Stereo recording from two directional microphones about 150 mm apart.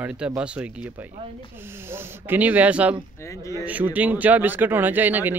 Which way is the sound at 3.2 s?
20° left (ahead or behind).